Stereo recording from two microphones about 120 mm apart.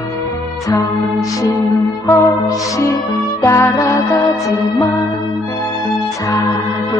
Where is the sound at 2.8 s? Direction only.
30° left (ahead or behind).